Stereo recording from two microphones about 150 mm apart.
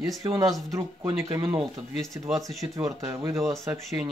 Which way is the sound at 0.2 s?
25° right (ahead or behind).